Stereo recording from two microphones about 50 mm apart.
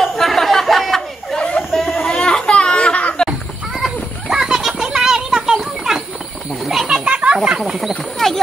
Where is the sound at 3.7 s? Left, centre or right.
Centre.